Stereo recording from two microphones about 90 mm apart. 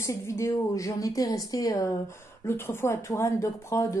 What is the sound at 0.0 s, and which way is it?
A woman's voice, 35° left (ahead or behind).